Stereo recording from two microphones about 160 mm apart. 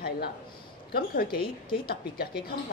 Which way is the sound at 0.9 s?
75° left (ahead or behind).